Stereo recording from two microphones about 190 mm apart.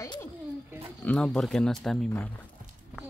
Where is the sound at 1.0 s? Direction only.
5° left (ahead or behind).